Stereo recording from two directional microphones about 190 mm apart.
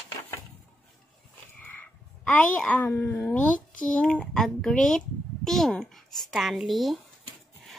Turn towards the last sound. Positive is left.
turn(degrees=0)  # may be behind; listen again after turning